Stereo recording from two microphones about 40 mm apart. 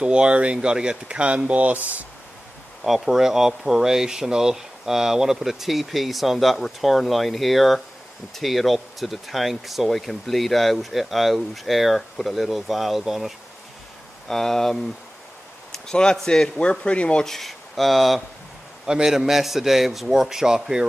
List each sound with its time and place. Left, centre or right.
0.0 s speech: right
2.8 s speech: centre
14.2 s speech: centre
15.9 s a man's voice: left
16.8 s speech: left
17.2 s speech: centre
18.9 s speech: centre